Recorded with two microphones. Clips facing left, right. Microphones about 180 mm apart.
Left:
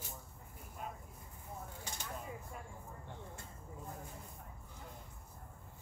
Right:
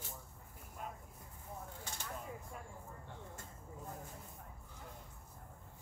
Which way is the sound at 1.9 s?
15° left (ahead or behind).